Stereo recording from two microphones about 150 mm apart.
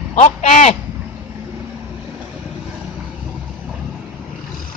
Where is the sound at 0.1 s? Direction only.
50° left (ahead or behind).